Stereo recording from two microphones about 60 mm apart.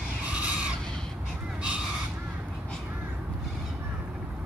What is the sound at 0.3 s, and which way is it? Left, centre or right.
Bird, right.